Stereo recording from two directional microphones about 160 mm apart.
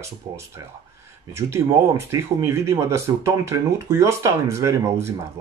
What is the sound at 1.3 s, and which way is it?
Speech, 15° right (ahead or behind).